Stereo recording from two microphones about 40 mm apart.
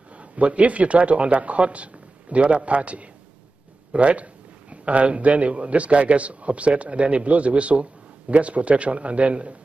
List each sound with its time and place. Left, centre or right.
0.1 s speech: right